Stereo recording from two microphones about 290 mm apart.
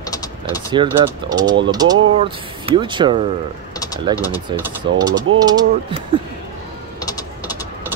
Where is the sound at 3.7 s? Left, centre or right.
Centre.